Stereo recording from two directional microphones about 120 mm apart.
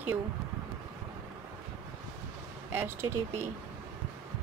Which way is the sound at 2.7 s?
20° right (ahead or behind).